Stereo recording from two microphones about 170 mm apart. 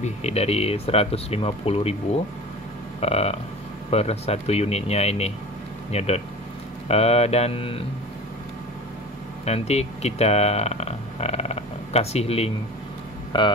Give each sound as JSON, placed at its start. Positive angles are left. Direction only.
{"t": 0.0, "sound": "speech", "side_deg": 40}
{"t": 3.0, "sound": "speech", "side_deg": 35}
{"t": 9.4, "sound": "speech", "side_deg": 40}